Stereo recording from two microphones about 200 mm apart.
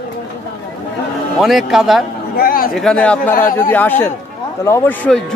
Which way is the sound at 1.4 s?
Centre (ahead or behind).